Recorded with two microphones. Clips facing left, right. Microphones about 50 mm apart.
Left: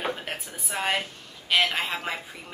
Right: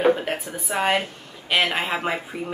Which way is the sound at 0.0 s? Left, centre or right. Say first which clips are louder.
Right 11 dB; centre.